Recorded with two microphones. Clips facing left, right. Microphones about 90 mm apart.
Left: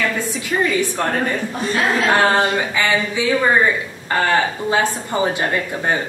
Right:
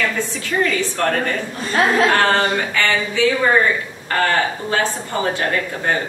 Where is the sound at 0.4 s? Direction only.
15° left (ahead or behind).